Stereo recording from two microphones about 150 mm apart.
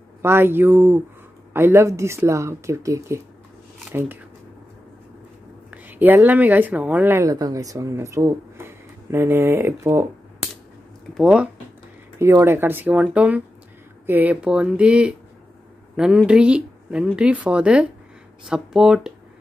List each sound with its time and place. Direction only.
0.2 s a woman's voice: 15° right (ahead or behind)
5.7 s speech: 10° right (ahead or behind)
11.1 s speech: 5° right (ahead or behind)
12.2 s a woman's voice: 15° right (ahead or behind)
16.3 s a woman's voice: 5° right (ahead or behind)